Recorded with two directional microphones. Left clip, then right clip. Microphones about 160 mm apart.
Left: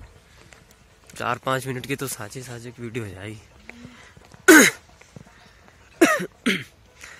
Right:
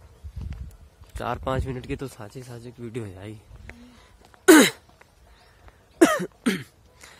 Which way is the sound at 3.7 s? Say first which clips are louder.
Left 3 dB; 5° left (ahead or behind).